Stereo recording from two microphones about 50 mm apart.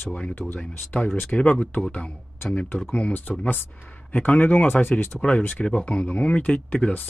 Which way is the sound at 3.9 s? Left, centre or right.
Left.